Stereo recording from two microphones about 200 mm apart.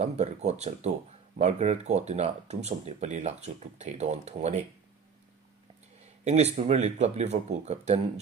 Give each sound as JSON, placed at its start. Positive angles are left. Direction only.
{"t": 0.0, "sound": "speech", "side_deg": -35}
{"t": 6.2, "sound": "speech", "side_deg": -35}